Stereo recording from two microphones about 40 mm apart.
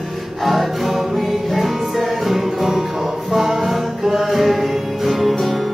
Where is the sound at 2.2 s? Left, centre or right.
Centre.